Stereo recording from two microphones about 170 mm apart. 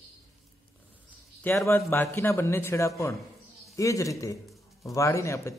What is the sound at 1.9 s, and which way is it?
A man's voice, 10° left (ahead or behind).